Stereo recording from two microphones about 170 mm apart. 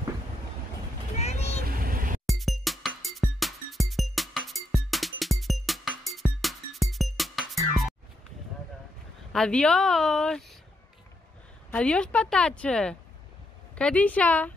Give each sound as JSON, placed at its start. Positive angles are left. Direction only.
{"t": 1.2, "sound": "vehicle", "side_deg": 40}
{"t": 1.7, "sound": "a sound", "side_deg": -55}
{"t": 2.2, "sound": "music", "side_deg": 0}
{"t": 9.3, "sound": "a woman's voice", "side_deg": 5}
{"t": 11.7, "sound": "a woman's voice", "side_deg": 5}